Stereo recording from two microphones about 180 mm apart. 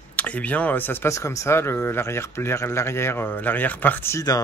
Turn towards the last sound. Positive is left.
turn(degrees=15)  # may be behind; listen again after turning